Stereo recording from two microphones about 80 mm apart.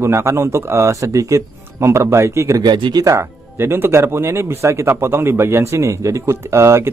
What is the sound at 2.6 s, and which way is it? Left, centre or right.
Speech, right.